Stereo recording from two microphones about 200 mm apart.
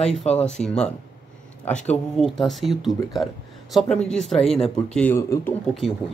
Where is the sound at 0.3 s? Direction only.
35° left (ahead or behind).